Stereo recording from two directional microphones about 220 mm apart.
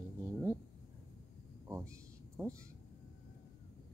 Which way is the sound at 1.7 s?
10° right (ahead or behind).